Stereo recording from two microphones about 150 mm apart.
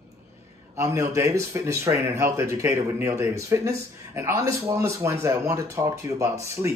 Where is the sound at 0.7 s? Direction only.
20° right (ahead or behind).